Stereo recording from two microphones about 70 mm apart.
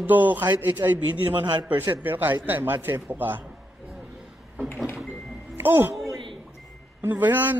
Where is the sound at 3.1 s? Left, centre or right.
Right.